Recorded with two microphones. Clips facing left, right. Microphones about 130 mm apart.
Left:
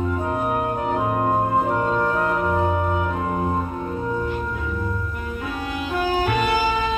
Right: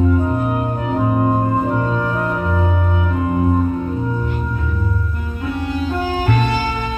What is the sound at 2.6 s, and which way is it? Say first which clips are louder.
Music: even; 40° left (ahead or behind).